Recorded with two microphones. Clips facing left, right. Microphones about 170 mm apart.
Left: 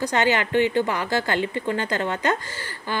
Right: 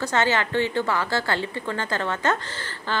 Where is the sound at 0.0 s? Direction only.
15° left (ahead or behind).